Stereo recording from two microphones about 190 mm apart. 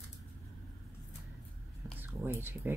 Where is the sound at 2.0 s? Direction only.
10° right (ahead or behind).